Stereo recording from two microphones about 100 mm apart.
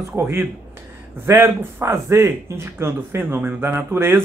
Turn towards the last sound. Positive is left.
turn(degrees=-25)  # may be behind; listen again after turning